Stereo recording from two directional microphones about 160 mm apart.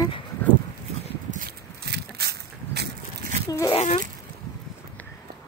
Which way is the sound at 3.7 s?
45° left (ahead or behind).